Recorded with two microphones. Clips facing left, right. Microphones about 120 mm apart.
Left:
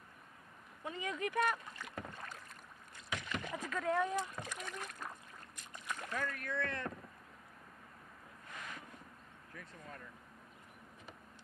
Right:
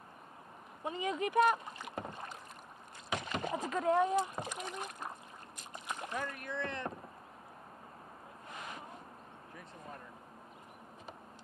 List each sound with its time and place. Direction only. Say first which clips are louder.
0.8 s speech: right 5 dB; 20° right (ahead or behind)
8.5 s a sound: right 3 dB; 20° right (ahead or behind)
9.6 s speech: right 2 dB; 20° right (ahead or behind)